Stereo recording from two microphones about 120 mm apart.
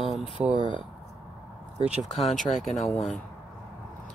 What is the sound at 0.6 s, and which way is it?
Speech, 40° left (ahead or behind).